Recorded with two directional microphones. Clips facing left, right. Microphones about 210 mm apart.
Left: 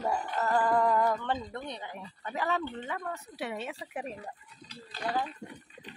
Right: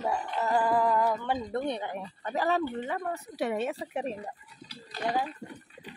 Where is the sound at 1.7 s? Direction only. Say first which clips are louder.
Right 8 dB; 55° right (ahead or behind).